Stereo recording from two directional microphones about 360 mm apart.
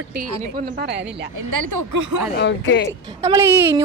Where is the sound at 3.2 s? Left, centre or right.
Centre.